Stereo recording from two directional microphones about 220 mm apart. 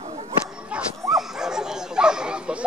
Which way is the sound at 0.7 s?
Centre (ahead or behind).